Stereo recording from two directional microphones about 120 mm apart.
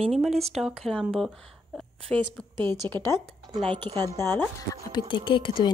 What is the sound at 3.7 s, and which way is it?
Speech, 50° right (ahead or behind).